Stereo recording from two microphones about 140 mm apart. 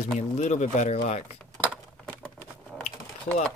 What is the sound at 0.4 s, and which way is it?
Speech, 60° left (ahead or behind).